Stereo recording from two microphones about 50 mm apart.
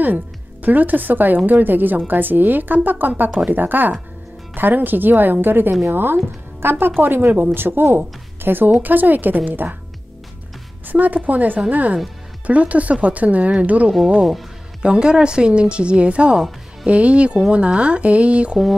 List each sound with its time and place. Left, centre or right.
0.0 s a woman's voice: right
10.9 s a woman's voice: right